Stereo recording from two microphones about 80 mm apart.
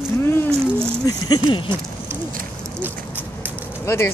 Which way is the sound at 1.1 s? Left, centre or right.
Left.